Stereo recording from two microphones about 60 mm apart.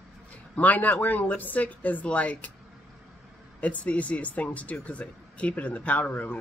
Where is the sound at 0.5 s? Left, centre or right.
Left.